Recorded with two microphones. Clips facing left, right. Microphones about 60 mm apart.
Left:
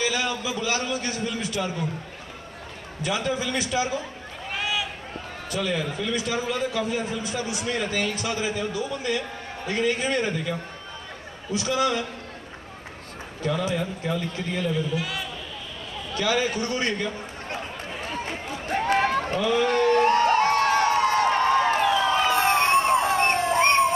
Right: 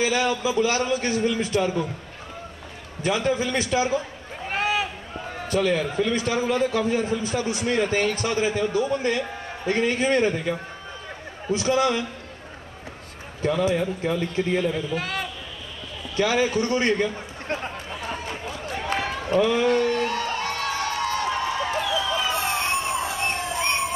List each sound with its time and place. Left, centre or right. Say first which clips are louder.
0.0 s a man's voice: right 4 dB; right
3.3 s a man's voice: right 3 dB; right
4.5 s a sound: right 4 dB; right
5.5 s a man's voice: right 5 dB; right
11.5 s a man's voice: right 3 dB; right
13.4 s speech: right 4 dB; right
15.0 s speech: right 2 dB; right
16.2 s a man's voice: right 3 dB; right
18.7 s run: left 6 dB; left
19.3 s a man's voice: right 3 dB; right
19.6 s crowd: left 2 dB; left